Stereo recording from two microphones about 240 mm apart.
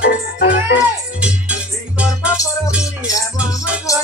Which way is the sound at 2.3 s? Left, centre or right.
Centre.